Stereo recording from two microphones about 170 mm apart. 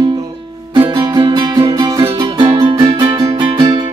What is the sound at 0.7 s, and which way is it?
Music, 25° right (ahead or behind).